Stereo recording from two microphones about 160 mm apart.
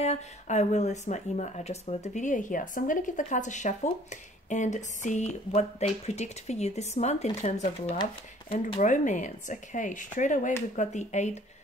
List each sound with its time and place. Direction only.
0.0 s speech: 45° left (ahead or behind)
8.8 s speech: 50° left (ahead or behind)